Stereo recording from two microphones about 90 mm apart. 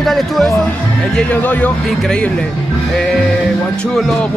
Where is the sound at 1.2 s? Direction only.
15° left (ahead or behind).